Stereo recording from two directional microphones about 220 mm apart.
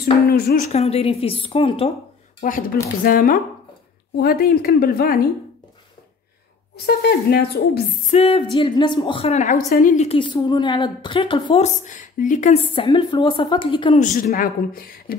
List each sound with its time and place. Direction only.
0.0 s a woman's voice: 45° left (ahead or behind)
0.7 s a woman's voice: 30° left (ahead or behind)
2.4 s a woman's voice: 40° left (ahead or behind)
6.8 s a woman's voice: 50° left (ahead or behind)
8.1 s a woman's voice: 25° left (ahead or behind)
12.7 s a woman's voice: 20° left (ahead or behind)
14.0 s a woman's voice: 40° left (ahead or behind)